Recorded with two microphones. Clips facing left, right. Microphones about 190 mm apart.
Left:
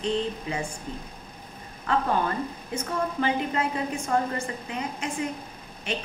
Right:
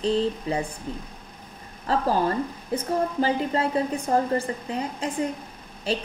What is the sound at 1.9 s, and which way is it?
A woman's voice, 35° right (ahead or behind).